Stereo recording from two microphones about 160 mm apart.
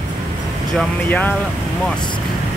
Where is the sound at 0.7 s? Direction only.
10° left (ahead or behind).